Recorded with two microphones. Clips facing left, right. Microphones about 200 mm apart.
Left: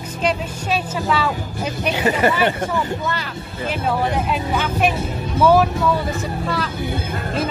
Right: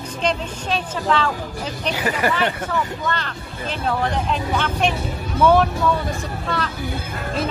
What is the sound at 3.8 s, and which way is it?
Speech, 10° left (ahead or behind).